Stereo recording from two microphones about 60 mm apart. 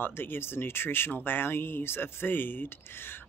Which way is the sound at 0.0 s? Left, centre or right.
Left.